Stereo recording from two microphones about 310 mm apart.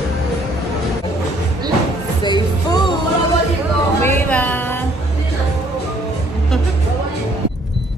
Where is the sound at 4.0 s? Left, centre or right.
Centre.